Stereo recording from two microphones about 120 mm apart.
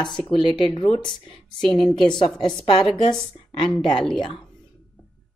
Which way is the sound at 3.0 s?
40° left (ahead or behind).